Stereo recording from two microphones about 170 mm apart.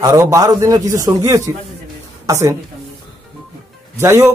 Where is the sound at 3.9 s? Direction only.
15° right (ahead or behind).